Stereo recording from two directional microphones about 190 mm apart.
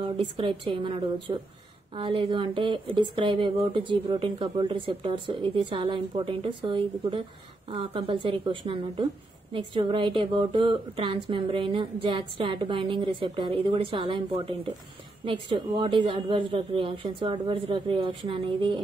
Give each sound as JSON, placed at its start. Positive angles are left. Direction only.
{"t": 0.0, "sound": "speech", "side_deg": -25}